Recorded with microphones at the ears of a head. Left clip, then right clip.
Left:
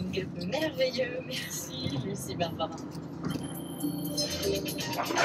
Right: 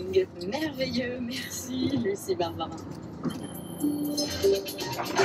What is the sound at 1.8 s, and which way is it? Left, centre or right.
Speech, right.